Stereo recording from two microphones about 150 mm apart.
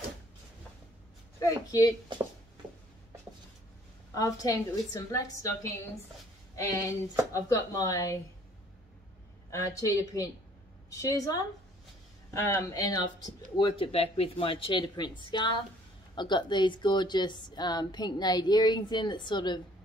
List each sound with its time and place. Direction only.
1.4 s a woman's voice: 25° left (ahead or behind)
4.1 s a woman's voice: 25° left (ahead or behind)
9.5 s a woman's voice: 20° left (ahead or behind)